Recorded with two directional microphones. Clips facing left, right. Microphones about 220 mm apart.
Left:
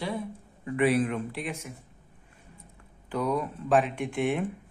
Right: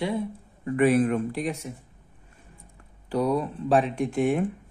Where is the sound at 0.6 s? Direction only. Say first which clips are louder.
Right 4 dB; 45° right (ahead or behind).